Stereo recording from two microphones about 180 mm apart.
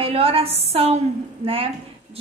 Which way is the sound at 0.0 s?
30° right (ahead or behind).